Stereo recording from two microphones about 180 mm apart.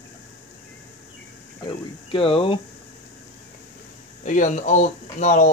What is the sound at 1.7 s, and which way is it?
Speech, 30° left (ahead or behind).